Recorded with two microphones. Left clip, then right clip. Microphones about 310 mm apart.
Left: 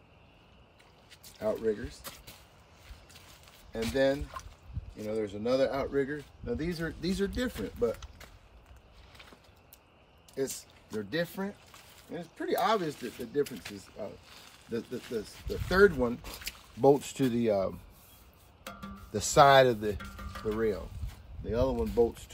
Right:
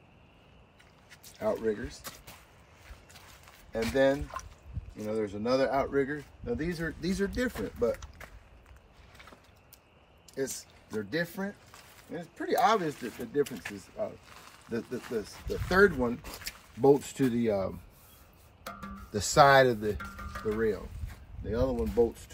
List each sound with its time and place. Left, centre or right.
1.4 s speech: centre
3.1 s a sound: centre
4.1 s speech: centre
10.3 s speech: centre
17.3 s speech: centre
18.6 s music: centre
19.3 s speech: centre
19.6 s speech: centre
21.5 s speech: centre
21.7 s speech: centre